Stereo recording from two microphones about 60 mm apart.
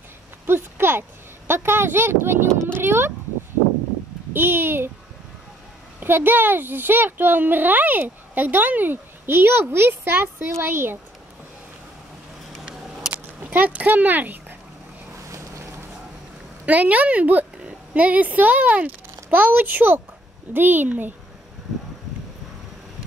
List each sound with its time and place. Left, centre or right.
0.5 s a sound: right
1.5 s speech: right
4.3 s a child's voice: right
5.9 s a child's voice: right
13.1 s speech: right
15.2 s boat: right
16.6 s a woman's voice: right